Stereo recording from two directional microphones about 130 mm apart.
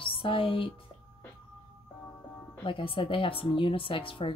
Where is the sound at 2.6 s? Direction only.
45° left (ahead or behind).